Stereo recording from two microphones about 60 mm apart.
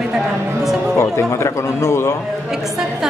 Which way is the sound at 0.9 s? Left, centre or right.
Left.